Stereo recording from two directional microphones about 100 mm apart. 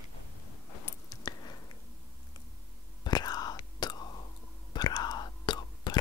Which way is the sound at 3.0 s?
40° left (ahead or behind).